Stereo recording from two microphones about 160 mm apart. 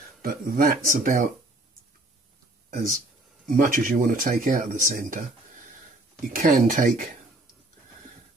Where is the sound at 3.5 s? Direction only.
60° right (ahead or behind).